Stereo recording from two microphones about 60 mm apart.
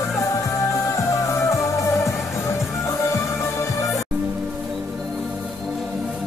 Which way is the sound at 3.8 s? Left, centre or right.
Left.